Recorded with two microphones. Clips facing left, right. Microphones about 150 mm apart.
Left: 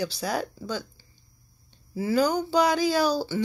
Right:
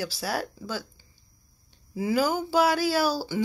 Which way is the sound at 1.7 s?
10° right (ahead or behind).